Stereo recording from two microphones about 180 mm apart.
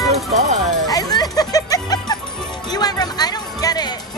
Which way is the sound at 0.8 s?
20° left (ahead or behind).